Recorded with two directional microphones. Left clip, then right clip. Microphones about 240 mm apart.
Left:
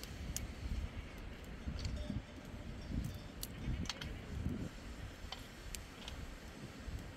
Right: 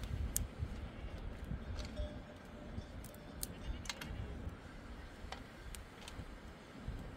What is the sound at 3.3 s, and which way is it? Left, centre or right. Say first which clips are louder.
Keys jangling: left 3 dB; right.